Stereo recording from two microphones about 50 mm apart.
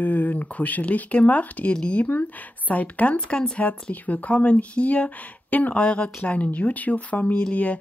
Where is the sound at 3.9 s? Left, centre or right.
Left.